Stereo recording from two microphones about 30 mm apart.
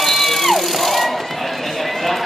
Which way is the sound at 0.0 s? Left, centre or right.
Centre.